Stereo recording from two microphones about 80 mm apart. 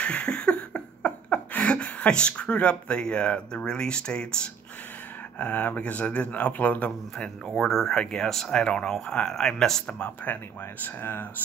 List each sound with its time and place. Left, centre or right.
0.0 s a sound: centre
5.4 s a man's voice: left
7.4 s speech: centre; by 11.2 s left